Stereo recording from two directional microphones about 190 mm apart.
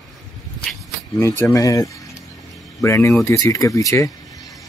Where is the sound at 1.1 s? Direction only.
15° left (ahead or behind).